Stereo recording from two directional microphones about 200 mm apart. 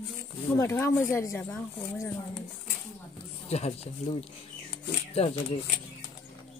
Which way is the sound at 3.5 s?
30° left (ahead or behind).